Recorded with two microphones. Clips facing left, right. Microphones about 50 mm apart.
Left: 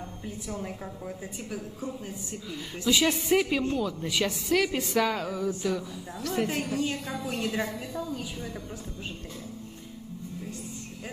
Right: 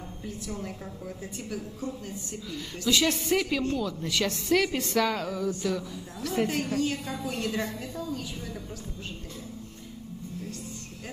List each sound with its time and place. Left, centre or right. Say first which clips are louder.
0.5 s a woman's voice: left 3 dB; centre